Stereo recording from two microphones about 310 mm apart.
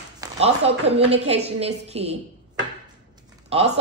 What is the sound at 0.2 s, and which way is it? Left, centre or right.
Speech, centre.